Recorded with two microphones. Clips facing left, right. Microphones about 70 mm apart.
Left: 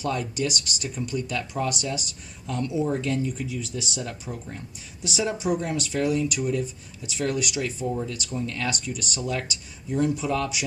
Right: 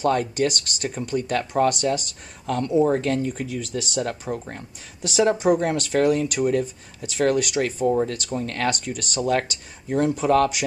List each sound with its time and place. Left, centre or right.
0.0 s speech: right